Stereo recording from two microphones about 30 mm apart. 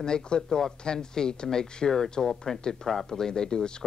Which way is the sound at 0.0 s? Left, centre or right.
Left.